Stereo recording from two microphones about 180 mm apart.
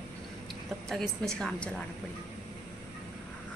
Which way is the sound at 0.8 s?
5° left (ahead or behind).